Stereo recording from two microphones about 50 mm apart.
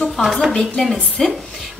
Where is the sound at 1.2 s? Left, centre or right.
Centre.